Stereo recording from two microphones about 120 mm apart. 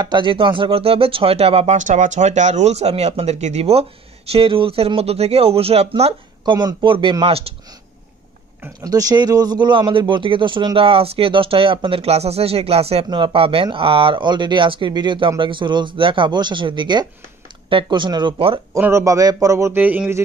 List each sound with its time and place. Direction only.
0.0 s speech: 40° right (ahead or behind)
1.8 s speech: 90° right; by 3.8 s 60° right (ahead or behind)
4.3 s speech: 50° right (ahead or behind)
6.4 s speech: 40° right (ahead or behind)
8.8 s speech: 30° right (ahead or behind)
18.8 s a man's voice: 20° right (ahead or behind)
19.8 s speech: 15° right (ahead or behind)